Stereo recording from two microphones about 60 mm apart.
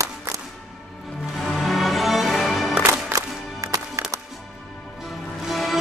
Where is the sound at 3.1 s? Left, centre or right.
Right.